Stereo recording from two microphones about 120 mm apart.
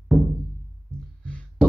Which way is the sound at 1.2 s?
10° left (ahead or behind).